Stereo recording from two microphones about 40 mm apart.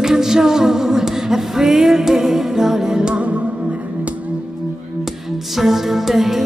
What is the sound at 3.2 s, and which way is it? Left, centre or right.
Music, right.